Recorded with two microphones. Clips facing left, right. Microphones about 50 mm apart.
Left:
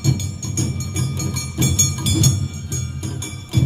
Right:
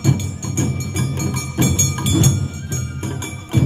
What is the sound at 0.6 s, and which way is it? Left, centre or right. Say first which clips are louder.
Music: right 3 dB; right.